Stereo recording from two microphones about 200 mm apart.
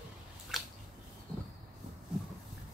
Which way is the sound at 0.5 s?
Centre (ahead or behind).